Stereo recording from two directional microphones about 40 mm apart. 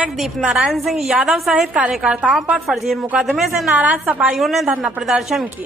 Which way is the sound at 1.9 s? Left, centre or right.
Centre.